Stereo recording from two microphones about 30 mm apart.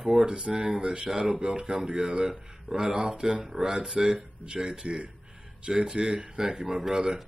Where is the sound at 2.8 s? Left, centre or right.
Right.